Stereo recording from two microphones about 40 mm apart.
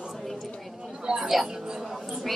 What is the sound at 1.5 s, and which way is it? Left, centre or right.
Speech, centre.